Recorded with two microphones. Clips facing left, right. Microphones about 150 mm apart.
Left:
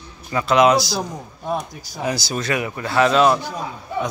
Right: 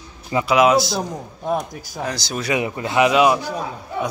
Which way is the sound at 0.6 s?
5° right (ahead or behind).